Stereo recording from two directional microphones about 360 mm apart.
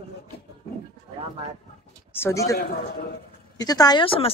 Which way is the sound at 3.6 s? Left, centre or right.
Centre.